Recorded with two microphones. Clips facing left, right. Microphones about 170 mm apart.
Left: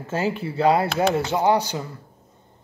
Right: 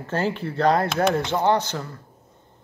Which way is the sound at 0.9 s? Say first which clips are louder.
Even; 35° left (ahead or behind).